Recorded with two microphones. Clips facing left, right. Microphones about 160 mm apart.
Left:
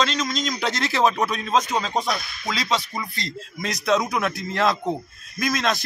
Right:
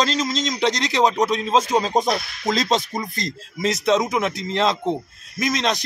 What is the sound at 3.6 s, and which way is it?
Speech, 25° right (ahead or behind).